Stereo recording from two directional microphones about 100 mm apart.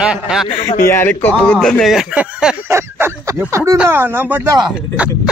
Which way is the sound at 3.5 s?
30° right (ahead or behind).